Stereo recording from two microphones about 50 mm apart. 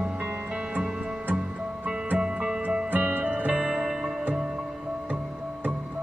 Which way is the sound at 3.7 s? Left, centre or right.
Centre.